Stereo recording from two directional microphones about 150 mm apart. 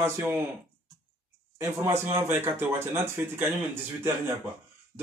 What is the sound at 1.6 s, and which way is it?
A man's voice, 20° right (ahead or behind).